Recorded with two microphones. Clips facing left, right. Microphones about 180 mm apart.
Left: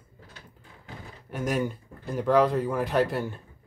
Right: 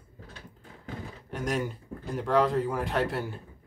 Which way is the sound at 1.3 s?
5° left (ahead or behind).